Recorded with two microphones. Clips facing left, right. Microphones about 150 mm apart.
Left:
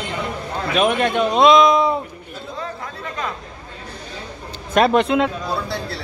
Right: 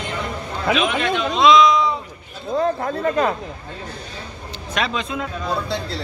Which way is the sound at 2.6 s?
50° right (ahead or behind).